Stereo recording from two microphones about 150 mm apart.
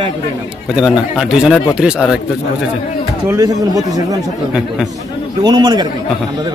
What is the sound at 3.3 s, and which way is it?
Speech, 20° right (ahead or behind).